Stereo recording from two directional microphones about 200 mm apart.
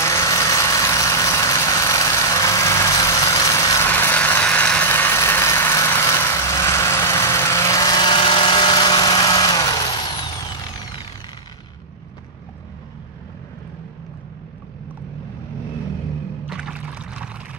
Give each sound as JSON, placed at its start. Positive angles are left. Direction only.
{"t": 0.0, "sound": "vehicle", "side_deg": 15}
{"t": 16.4, "sound": "boat", "side_deg": -5}